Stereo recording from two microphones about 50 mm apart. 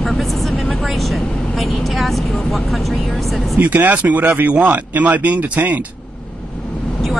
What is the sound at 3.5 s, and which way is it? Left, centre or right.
Speech, right.